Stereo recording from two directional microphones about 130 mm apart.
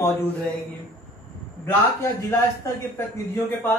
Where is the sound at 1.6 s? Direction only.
20° left (ahead or behind).